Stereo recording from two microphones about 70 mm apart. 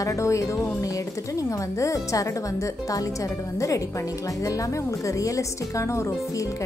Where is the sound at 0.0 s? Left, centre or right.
Left.